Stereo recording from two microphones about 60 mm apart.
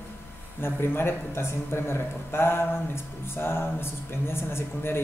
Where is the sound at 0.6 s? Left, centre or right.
Left.